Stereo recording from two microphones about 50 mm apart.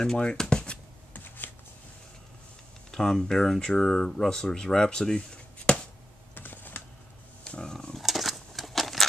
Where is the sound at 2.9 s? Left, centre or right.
Centre.